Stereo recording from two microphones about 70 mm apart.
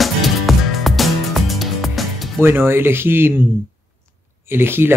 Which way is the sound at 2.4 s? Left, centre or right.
Right.